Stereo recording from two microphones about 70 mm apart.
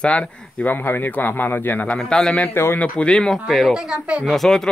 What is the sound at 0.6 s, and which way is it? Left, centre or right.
Speech, left.